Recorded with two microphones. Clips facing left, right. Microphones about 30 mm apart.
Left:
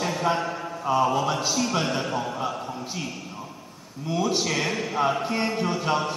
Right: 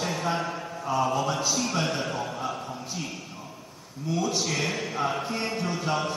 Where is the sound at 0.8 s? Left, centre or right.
Centre.